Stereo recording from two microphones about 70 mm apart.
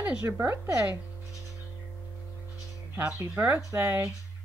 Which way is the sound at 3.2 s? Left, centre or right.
Right.